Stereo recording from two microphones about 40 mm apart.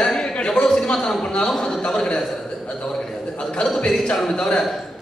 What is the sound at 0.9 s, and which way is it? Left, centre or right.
Speech, centre.